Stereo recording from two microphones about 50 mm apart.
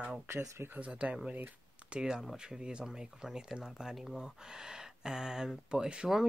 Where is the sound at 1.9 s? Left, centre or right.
Centre.